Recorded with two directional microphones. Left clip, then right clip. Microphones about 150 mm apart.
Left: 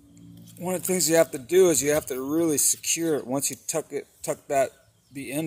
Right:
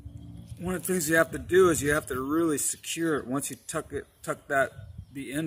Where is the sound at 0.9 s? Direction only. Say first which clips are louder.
Left 3 dB; 20° right (ahead or behind).